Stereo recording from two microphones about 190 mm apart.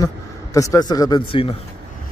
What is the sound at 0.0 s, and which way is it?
A man's voice, 15° left (ahead or behind).